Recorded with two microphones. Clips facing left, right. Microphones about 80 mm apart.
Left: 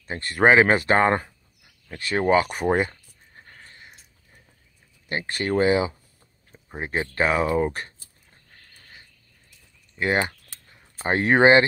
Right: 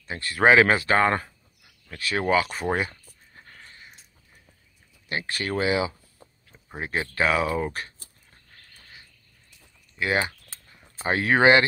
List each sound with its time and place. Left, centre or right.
0.0 s speech: left
3.4 s a sound: left
5.0 s speech: left
11.1 s speech: left